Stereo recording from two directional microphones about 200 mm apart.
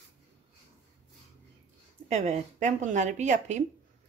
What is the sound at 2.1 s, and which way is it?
A woman's voice, 35° right (ahead or behind).